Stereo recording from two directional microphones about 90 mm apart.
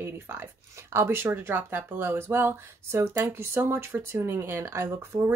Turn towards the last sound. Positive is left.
turn(degrees=-30)  # may be behind; listen again after turning